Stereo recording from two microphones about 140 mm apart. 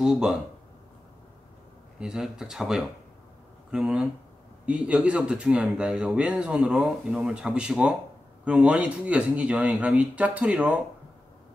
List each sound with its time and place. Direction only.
0.0 s speech: 5° right (ahead or behind)
2.0 s speech: 5° right (ahead or behind)